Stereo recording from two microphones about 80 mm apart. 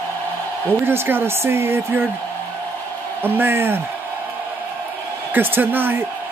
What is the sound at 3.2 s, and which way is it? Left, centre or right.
Speech, right.